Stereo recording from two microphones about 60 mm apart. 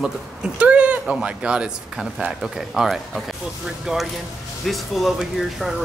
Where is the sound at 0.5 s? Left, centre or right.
Right.